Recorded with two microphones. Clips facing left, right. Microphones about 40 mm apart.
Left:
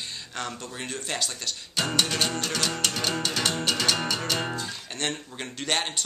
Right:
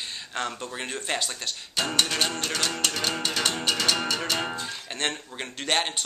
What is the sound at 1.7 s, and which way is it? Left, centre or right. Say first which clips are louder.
Music: even; centre.